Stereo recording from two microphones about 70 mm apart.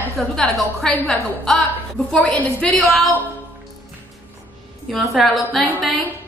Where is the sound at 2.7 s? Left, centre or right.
Centre.